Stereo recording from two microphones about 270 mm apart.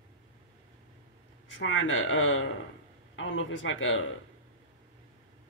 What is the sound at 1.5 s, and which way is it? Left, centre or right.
Speech, left.